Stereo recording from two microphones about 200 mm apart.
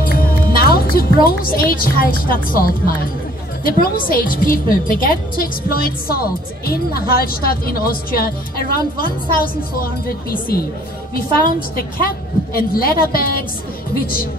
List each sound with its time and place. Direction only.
0.0 s a woman's voice: 45° left (ahead or behind)